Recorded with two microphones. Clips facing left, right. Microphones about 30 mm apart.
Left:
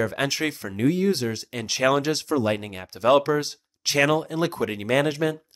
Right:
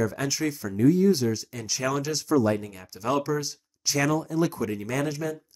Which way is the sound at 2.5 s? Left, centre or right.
Left.